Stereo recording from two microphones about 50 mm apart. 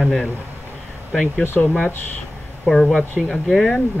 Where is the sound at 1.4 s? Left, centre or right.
Left.